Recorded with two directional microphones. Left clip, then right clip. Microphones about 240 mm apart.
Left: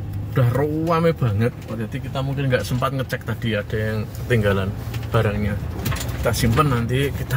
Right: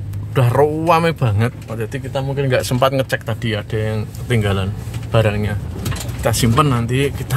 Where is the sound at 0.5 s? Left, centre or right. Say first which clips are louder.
Right 8 dB; right.